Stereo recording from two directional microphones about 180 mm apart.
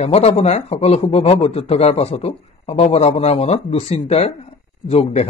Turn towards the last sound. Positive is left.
turn(degrees=35)  # may be behind; listen again after turning